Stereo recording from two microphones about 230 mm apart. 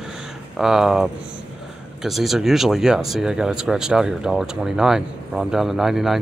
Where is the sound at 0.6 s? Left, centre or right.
Centre.